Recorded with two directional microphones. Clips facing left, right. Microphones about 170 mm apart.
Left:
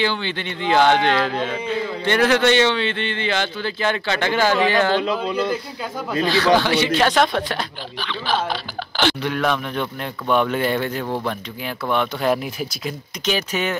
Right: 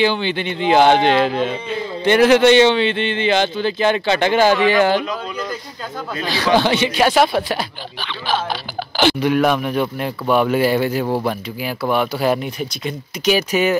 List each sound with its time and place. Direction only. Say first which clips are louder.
0.0 s a man's voice: right 5 dB; 15° right (ahead or behind)
5.1 s speech: left 4 dB; 10° left (ahead or behind)
6.2 s a man's voice: right 1 dB; 15° right (ahead or behind)
13.2 s a man's voice: right 6 dB; 10° right (ahead or behind)